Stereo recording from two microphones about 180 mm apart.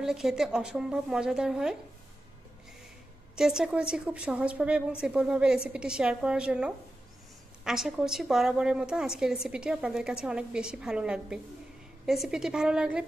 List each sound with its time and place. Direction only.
0.0 s a woman's voice: centre (ahead or behind)
3.3 s a woman's voice: 5° right (ahead or behind)